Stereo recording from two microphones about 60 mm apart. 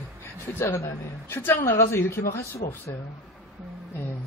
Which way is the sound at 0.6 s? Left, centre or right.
Left.